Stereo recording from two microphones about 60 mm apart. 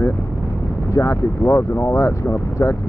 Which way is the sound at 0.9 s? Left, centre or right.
Left.